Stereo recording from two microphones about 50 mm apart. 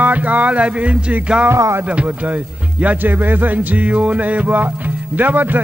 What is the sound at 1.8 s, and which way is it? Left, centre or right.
Speech, right.